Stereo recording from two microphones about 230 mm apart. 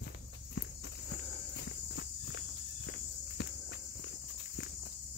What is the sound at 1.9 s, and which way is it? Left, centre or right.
Walk, left.